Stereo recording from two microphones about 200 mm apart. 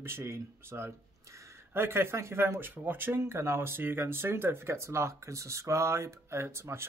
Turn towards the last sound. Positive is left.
turn(degrees=-15)  # may be behind; listen again after turning